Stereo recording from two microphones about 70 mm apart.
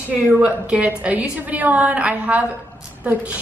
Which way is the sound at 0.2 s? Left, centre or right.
Right.